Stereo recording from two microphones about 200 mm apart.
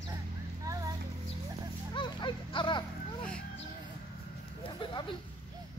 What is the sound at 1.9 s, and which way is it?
Music, 25° left (ahead or behind).